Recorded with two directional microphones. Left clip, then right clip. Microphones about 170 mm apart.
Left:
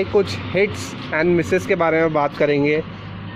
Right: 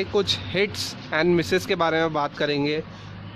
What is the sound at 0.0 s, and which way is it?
Speech, 20° right (ahead or behind).